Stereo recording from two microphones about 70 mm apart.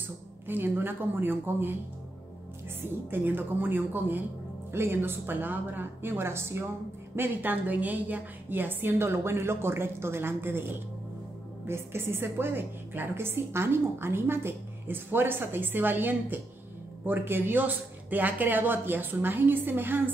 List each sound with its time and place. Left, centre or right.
0.5 s a woman's voice: right
3.1 s a woman's voice: right